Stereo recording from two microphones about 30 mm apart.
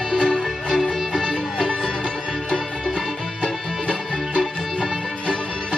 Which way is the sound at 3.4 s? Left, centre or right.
Left.